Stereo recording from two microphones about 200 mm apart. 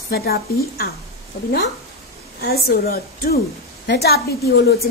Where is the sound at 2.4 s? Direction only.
50° left (ahead or behind).